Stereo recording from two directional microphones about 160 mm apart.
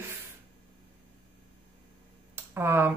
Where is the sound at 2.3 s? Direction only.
15° right (ahead or behind).